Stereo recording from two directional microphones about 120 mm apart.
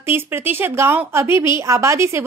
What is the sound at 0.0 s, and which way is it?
A woman's voice, 20° right (ahead or behind).